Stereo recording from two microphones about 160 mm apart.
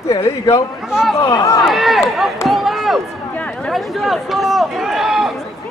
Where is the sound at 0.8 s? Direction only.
Centre (ahead or behind).